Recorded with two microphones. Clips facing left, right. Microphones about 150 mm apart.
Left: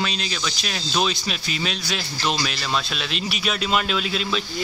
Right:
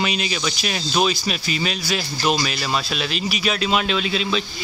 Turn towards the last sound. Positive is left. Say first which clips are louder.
# right 3 dB
turn(degrees=0)  # may be behind; listen again after turning